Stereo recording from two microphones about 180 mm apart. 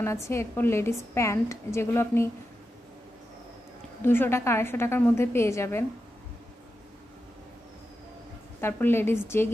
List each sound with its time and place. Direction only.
0.3 s a woman's voice: 15° left (ahead or behind)
4.0 s a woman's voice: 10° left (ahead or behind)
8.5 s a woman's voice: 10° left (ahead or behind)